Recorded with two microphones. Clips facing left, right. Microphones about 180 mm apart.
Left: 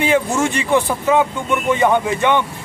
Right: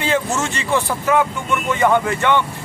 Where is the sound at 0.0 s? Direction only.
15° left (ahead or behind).